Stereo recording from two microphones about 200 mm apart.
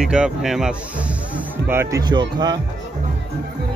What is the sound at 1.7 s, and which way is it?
Speech, 15° right (ahead or behind).